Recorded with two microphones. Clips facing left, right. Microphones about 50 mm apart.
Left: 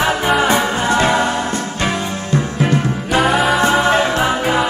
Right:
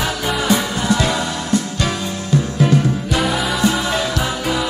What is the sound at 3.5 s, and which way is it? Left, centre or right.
Music, left.